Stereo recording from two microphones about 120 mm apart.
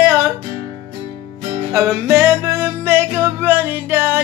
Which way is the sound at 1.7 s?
25° right (ahead or behind).